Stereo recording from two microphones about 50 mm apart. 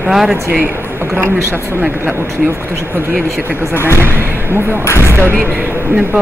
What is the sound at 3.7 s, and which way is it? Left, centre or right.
Speech, left.